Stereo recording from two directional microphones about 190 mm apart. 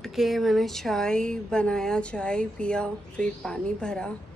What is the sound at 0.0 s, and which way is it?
Speech, centre (ahead or behind).